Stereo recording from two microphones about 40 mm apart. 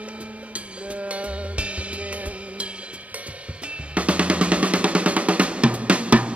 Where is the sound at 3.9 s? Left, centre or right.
Right.